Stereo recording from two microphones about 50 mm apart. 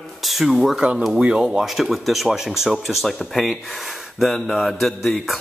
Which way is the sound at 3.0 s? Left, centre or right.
Centre.